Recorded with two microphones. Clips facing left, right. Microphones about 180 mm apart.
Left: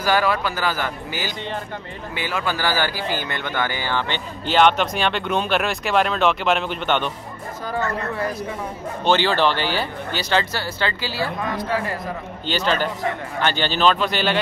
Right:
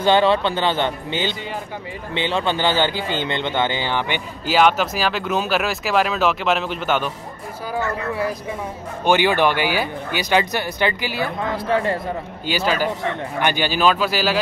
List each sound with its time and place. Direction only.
0.0 s speech: 25° right (ahead or behind)
4.5 s speech: 5° right (ahead or behind)
9.0 s speech: 15° right (ahead or behind)
12.4 s speech: 10° right (ahead or behind)